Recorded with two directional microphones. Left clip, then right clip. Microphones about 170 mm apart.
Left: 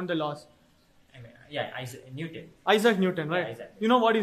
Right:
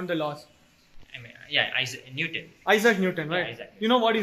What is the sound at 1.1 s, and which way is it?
Speech, 20° left (ahead or behind).